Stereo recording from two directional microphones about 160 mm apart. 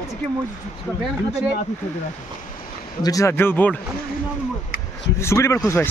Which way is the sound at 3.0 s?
20° left (ahead or behind).